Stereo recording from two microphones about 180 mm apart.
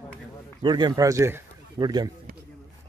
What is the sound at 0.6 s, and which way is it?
A man's voice, 25° right (ahead or behind).